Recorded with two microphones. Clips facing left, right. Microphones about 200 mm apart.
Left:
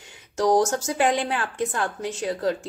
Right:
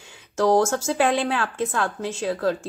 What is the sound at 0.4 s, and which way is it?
A woman's voice, 15° left (ahead or behind).